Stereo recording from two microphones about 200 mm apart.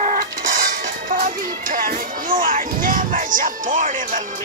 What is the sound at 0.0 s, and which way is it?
Music, 40° right (ahead or behind).